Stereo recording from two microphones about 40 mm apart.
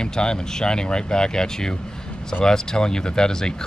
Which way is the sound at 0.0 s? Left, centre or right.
Centre.